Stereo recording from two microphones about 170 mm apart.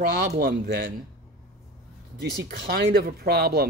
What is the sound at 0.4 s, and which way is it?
Speech, 60° right (ahead or behind).